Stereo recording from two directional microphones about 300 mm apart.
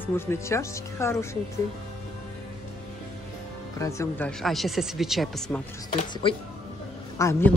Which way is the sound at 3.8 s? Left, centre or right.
Centre.